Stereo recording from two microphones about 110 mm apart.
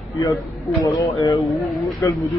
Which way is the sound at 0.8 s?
30° left (ahead or behind).